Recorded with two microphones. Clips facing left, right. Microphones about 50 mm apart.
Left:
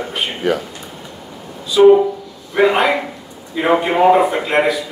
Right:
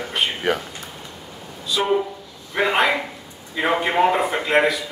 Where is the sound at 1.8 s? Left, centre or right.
Centre.